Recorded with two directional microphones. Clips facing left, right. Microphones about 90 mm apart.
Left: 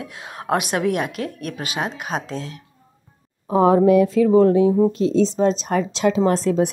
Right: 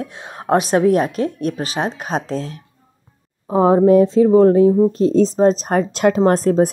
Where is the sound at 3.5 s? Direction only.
30° right (ahead or behind).